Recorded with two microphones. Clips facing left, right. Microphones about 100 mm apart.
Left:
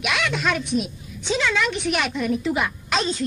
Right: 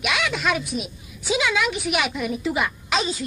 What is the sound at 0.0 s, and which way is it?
A woman's voice, centre (ahead or behind).